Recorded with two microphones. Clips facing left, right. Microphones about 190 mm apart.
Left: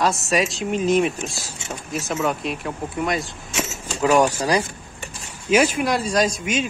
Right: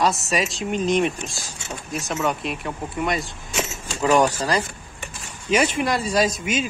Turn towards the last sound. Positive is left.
turn(degrees=0)  # may be behind; listen again after turning